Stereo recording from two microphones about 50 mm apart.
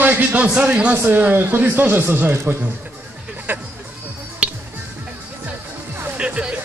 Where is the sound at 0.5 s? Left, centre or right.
Right.